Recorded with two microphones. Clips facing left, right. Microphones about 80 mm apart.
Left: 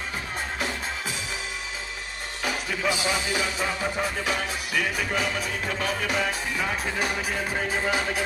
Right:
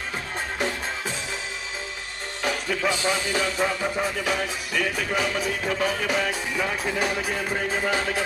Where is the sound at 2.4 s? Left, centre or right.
Centre.